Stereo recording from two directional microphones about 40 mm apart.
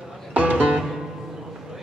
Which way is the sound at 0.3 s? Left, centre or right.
Right.